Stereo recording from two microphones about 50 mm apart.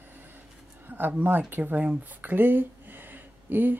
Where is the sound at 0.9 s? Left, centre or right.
Right.